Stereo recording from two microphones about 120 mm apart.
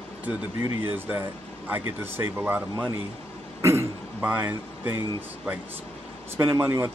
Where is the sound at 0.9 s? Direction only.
15° right (ahead or behind).